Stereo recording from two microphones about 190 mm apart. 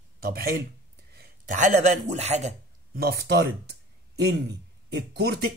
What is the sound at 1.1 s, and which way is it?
A man's voice, 45° right (ahead or behind).